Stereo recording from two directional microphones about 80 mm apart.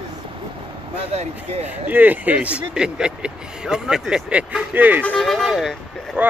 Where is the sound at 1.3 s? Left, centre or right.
Right.